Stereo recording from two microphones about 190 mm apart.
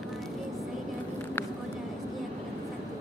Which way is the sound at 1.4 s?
10° left (ahead or behind).